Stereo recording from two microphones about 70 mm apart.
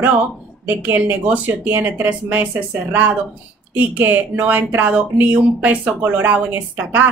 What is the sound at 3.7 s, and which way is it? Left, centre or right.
A woman's voice, right.